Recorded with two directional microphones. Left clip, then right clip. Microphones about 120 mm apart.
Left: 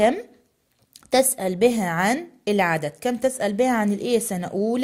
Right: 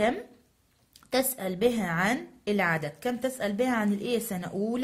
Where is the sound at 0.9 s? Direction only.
55° left (ahead or behind).